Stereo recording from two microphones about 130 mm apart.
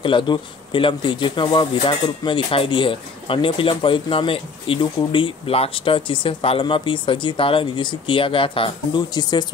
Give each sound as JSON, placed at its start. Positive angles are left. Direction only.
{"t": 0.0, "sound": "speech", "side_deg": 40}